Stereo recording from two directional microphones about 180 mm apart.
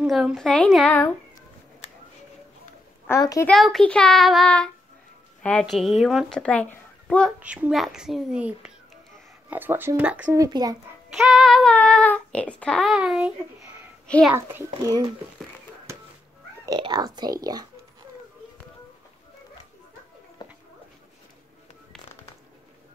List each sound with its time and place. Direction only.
0.0 s speech: centre (ahead or behind)
3.1 s a child's voice: 20° left (ahead or behind)
3.4 s speech: centre (ahead or behind)
7.3 s a child's voice: 10° right (ahead or behind)
10.3 s speech: 20° right (ahead or behind)
11.1 s a child's voice: centre (ahead or behind)
14.3 s a child's voice: 15° right (ahead or behind)
15.9 s cat: 15° right (ahead or behind)
16.6 s speech: 20° right (ahead or behind)
20.4 s a sound: 25° left (ahead or behind)